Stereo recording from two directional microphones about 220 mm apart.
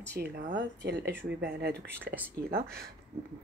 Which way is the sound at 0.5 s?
50° right (ahead or behind).